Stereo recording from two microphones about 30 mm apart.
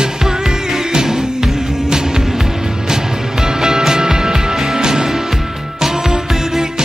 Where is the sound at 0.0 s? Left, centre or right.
Right.